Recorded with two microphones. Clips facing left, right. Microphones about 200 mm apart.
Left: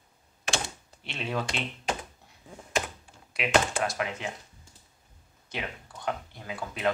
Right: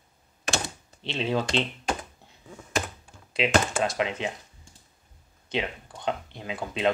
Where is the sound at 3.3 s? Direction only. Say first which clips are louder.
Right 2 dB; 25° right (ahead or behind).